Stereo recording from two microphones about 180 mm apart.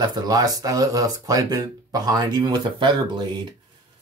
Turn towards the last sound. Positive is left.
turn(degrees=-25)  # may be behind; listen again after turning